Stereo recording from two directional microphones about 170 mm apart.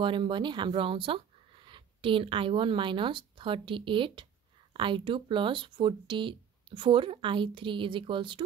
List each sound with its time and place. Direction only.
0.0 s speech: 30° right (ahead or behind)